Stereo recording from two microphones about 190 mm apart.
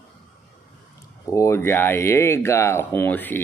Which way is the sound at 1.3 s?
15° left (ahead or behind).